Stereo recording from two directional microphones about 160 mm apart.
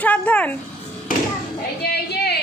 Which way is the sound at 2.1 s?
85° left.